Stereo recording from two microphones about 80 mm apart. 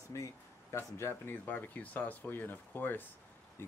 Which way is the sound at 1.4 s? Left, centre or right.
Centre.